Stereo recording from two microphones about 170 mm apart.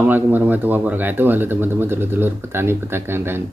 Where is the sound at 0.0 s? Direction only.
10° right (ahead or behind).